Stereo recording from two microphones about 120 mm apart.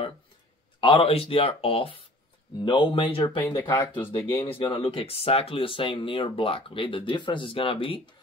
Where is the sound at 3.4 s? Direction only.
15° left (ahead or behind).